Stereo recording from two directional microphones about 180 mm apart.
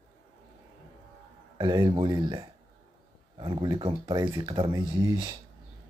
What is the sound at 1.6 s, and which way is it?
Speech, 25° right (ahead or behind).